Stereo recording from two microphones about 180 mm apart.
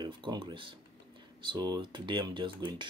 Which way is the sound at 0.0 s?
25° right (ahead or behind).